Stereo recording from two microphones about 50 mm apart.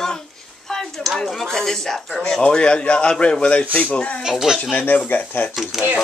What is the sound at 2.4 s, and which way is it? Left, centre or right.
Speech, left.